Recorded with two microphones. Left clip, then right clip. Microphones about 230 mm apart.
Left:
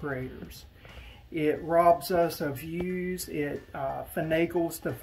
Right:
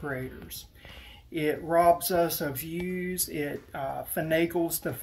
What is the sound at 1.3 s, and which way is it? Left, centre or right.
Speech, centre.